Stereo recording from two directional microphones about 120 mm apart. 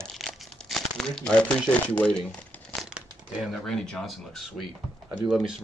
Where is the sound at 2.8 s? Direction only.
5° right (ahead or behind).